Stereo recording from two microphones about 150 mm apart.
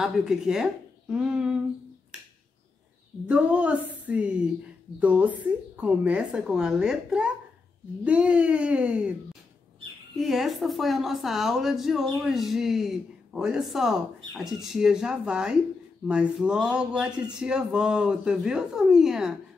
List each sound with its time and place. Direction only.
0.0 s a woman's voice: 5° right (ahead or behind)
3.3 s a woman's voice: 5° right (ahead or behind)
10.1 s a woman's voice: centre (ahead or behind)